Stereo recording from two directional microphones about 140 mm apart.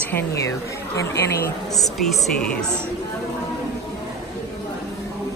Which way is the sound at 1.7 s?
Centre (ahead or behind).